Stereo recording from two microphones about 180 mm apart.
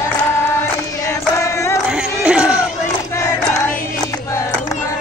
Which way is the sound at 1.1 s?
15° left (ahead or behind).